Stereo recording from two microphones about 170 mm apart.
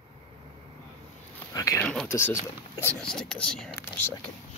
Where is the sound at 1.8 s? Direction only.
5° left (ahead or behind).